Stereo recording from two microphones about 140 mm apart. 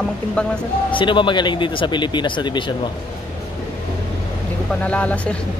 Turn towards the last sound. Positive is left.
turn(degrees=10)  # may be behind; listen again after turning